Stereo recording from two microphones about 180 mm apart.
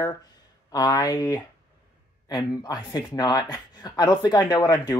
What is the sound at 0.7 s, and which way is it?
Speech, 20° left (ahead or behind).